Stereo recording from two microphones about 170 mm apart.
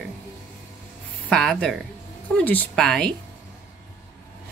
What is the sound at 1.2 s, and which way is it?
Speech, centre (ahead or behind).